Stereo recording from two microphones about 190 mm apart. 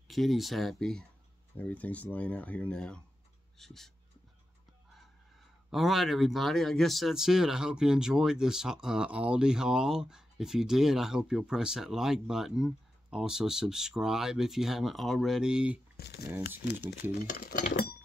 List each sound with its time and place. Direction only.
0.1 s speech: centre (ahead or behind)
5.7 s speech: centre (ahead or behind)
16.0 s speech: 60° left (ahead or behind)
17.2 s speech: 50° left (ahead or behind)